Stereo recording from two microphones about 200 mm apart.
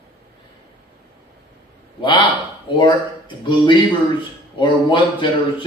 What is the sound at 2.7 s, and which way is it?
Speech, 25° left (ahead or behind).